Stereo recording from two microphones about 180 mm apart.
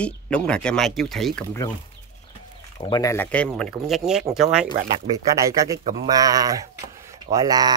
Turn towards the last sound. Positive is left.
turn(degrees=-20)  # may be behind; listen again after turning